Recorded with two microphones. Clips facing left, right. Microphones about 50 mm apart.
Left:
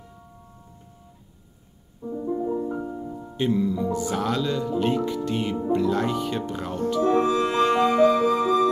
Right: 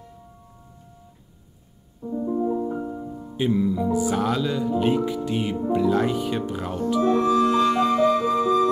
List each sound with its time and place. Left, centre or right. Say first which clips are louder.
2.0 s music: right 2 dB; centre
3.3 s speech: right 1 dB; centre
7.1 s music: right 2 dB; left
8.1 s music: even; left